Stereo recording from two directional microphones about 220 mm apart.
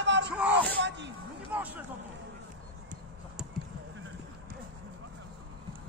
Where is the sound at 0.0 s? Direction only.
55° right (ahead or behind).